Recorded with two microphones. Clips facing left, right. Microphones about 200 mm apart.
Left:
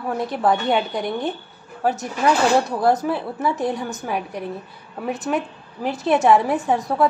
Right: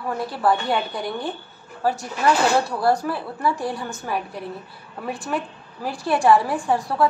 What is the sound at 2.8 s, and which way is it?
A woman's voice, 20° left (ahead or behind).